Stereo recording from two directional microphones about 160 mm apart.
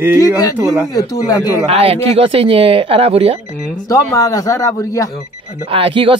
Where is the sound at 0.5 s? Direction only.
15° right (ahead or behind).